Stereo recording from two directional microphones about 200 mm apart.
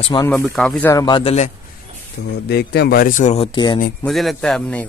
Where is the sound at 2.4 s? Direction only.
55° left (ahead or behind); by 3.4 s 35° left (ahead or behind).